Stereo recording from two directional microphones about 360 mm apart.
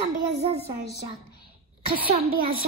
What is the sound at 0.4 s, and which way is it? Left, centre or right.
Speech, centre.